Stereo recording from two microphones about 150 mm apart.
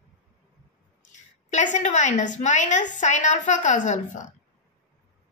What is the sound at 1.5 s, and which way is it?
A woman's voice, 55° left (ahead or behind).